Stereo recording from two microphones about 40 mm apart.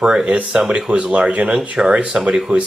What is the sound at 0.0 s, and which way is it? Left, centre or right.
Speech, right.